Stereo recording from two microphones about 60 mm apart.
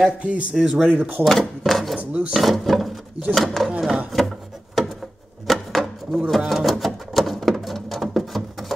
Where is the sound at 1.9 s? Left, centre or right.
Right.